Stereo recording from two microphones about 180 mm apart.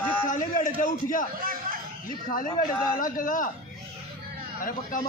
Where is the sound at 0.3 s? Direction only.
45° left (ahead or behind).